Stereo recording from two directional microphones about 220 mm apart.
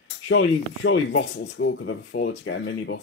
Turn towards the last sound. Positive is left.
turn(degrees=55)  # may be behind; listen again after turning